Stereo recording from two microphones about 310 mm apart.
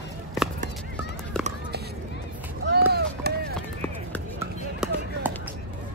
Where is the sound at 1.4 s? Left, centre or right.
Centre.